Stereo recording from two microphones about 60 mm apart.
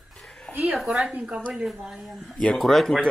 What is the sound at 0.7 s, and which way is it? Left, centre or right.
Speech, centre.